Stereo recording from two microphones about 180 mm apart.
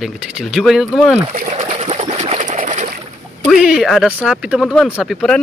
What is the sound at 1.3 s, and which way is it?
Speech, 45° right (ahead or behind).